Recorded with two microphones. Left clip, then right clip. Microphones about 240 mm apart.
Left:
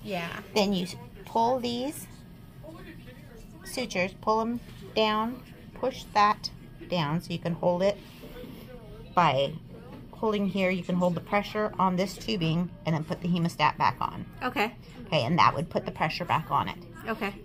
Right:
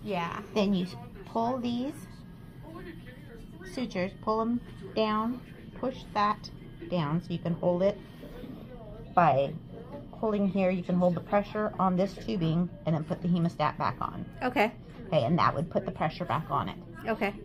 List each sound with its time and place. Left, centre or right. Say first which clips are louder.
0.0 s a woman's voice: right 1 dB; centre
0.5 s a woman's voice: left 6 dB; left
3.7 s a woman's voice: left 4 dB; left
9.1 s a woman's voice: even; left
14.4 s a woman's voice: right 2 dB; centre
15.0 s a woman's voice: left 3 dB; left
17.0 s a woman's voice: right 2 dB; centre